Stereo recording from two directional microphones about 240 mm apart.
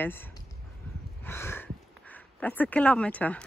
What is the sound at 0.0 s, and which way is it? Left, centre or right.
Speech, centre.